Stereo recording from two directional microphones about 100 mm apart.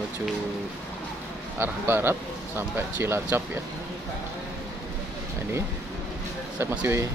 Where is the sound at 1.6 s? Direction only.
20° right (ahead or behind).